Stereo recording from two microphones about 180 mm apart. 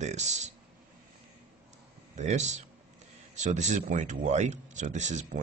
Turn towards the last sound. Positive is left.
turn(degrees=-40)  # may be behind; listen again after turning